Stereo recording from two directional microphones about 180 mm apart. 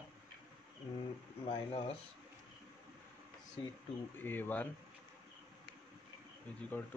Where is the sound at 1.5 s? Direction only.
25° left (ahead or behind).